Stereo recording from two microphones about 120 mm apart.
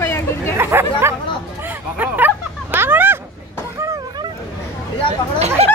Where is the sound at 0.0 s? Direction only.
20° left (ahead or behind).